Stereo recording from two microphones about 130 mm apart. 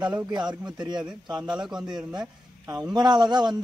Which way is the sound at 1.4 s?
5° right (ahead or behind).